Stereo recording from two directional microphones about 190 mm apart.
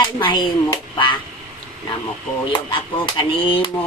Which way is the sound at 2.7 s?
25° left (ahead or behind).